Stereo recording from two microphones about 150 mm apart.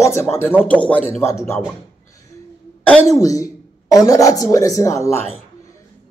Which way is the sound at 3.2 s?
20° left (ahead or behind).